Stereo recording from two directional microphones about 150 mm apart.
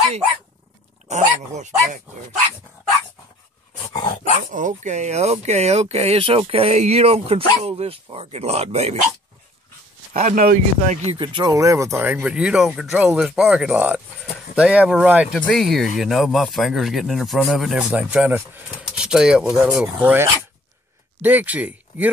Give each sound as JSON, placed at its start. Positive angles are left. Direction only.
{"t": 1.0, "sound": "speech", "side_deg": -50}
{"t": 3.9, "sound": "dog", "side_deg": 30}
{"t": 4.5, "sound": "speech", "side_deg": -55}
{"t": 10.1, "sound": "speech", "side_deg": -65}
{"t": 11.1, "sound": "speech", "side_deg": -30}